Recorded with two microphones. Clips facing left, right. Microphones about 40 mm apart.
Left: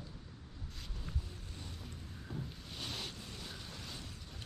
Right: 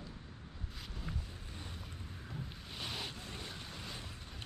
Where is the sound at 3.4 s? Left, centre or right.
Centre.